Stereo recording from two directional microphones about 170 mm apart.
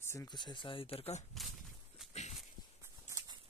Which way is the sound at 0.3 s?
25° left (ahead or behind).